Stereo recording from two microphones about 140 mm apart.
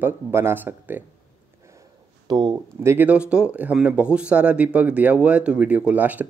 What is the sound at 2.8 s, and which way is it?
Speech, 15° right (ahead or behind).